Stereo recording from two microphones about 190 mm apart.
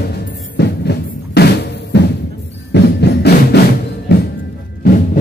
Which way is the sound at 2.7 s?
65° left (ahead or behind).